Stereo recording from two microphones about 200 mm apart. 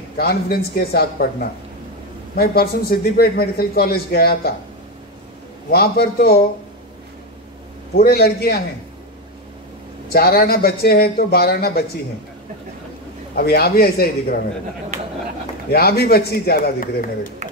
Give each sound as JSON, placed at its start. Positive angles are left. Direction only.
{"t": 0.2, "sound": "a man's voice", "side_deg": 50}
{"t": 5.7, "sound": "a man's voice", "side_deg": 50}
{"t": 7.9, "sound": "a man's voice", "side_deg": 50}
{"t": 10.0, "sound": "a man's voice", "side_deg": 50}
{"t": 13.3, "sound": "a man's voice", "side_deg": 50}
{"t": 15.7, "sound": "a man's voice", "side_deg": 50}